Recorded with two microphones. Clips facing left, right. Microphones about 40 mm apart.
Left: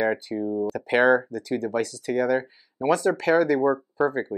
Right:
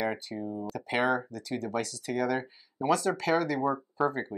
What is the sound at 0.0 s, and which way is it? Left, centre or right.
Speech, centre.